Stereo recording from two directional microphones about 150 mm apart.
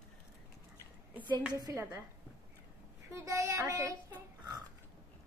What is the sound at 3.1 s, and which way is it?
Speech, 20° right (ahead or behind).